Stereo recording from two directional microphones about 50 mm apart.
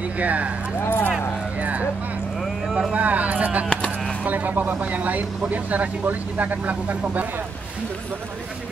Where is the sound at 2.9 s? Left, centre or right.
Right.